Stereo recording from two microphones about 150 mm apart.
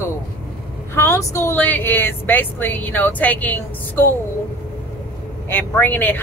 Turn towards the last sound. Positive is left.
turn(degrees=10)  # may be behind; listen again after turning